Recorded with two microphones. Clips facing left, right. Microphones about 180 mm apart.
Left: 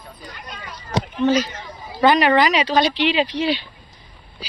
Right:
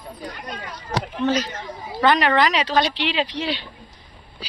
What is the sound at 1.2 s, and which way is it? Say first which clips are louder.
Speech: left 4 dB; 5° left (ahead or behind).